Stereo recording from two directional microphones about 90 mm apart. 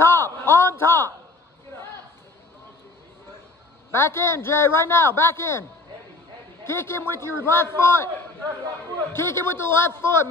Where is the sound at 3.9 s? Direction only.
25° left (ahead or behind).